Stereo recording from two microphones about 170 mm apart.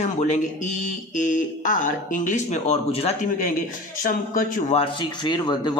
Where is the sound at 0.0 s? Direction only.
40° left (ahead or behind).